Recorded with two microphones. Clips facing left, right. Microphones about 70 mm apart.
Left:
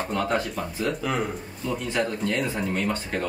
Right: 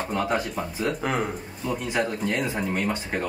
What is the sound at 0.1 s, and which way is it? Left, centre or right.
Speech, centre.